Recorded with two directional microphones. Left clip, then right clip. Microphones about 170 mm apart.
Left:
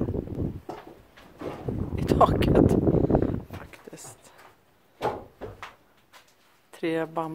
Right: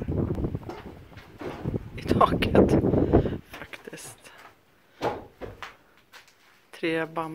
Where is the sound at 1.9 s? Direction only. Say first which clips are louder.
Left 1 dB; 25° left (ahead or behind).